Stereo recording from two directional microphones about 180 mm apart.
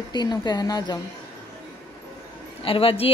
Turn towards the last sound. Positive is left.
turn(degrees=30)  # may be behind; listen again after turning